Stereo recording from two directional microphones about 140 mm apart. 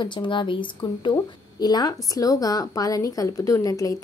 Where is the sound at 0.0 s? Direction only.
35° left (ahead or behind).